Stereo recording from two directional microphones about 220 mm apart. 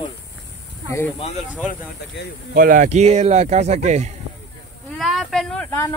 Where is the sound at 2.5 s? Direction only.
40° right (ahead or behind).